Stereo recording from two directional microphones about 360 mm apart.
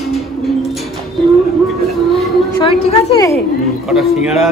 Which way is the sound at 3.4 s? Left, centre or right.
Centre.